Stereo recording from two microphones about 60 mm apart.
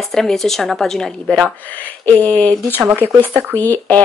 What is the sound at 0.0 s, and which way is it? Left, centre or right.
Speech, centre.